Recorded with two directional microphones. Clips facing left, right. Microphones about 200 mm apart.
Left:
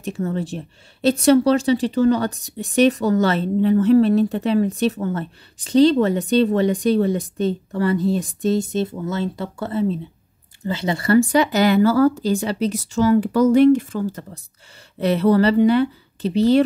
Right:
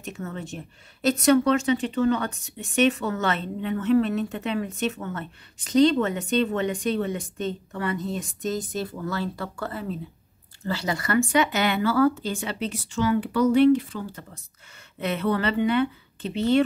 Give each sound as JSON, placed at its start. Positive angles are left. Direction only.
{"t": 0.0, "sound": "speech", "side_deg": 35}